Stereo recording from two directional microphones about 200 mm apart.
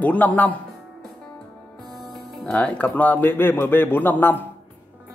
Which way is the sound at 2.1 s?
Centre (ahead or behind).